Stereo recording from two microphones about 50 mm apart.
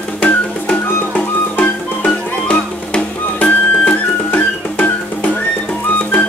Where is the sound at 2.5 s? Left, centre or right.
Left.